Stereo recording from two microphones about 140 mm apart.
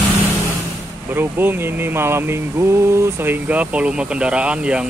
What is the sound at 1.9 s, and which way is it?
Speech, 15° right (ahead or behind).